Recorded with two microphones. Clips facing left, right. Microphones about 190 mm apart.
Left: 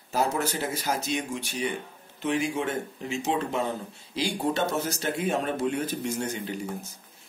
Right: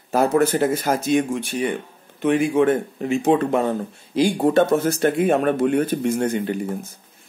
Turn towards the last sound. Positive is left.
turn(degrees=-55)  # may be behind; listen again after turning